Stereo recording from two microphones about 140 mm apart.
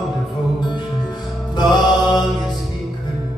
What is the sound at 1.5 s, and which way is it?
Mantra, 30° left (ahead or behind).